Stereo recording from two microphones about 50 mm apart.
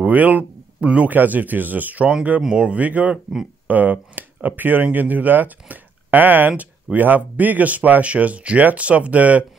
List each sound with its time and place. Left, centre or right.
0.0 s speech: right
0.7 s speech: right
2.4 s speech: centre
2.7 s speech: right